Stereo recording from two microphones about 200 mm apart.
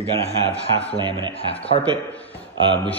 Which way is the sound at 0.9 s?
20° right (ahead or behind).